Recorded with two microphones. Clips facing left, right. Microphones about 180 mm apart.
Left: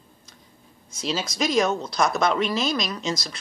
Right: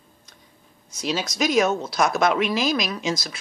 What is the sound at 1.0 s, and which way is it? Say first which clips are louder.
Speech: right 2 dB; centre (ahead or behind).